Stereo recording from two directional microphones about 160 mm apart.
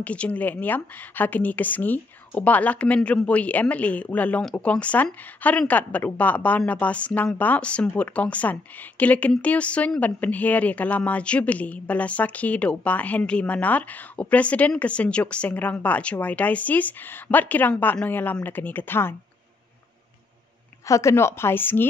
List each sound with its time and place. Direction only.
0.0 s speech: 10° left (ahead or behind)
20.8 s speech: 20° left (ahead or behind)